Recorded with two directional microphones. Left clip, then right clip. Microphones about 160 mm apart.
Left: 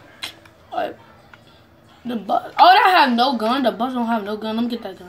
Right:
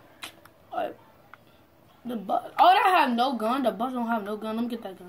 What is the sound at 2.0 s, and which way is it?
Speech, 5° right (ahead or behind).